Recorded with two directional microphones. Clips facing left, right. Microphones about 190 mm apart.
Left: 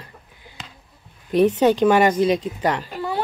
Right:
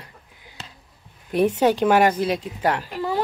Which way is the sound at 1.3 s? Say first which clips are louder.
Left 3 dB; 10° right (ahead or behind).